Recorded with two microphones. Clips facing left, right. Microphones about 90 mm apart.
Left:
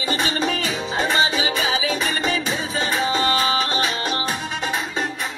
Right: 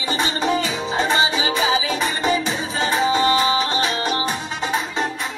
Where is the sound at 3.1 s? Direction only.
15° right (ahead or behind).